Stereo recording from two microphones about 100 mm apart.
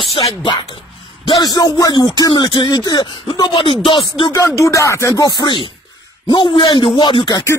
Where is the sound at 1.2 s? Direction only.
45° left (ahead or behind).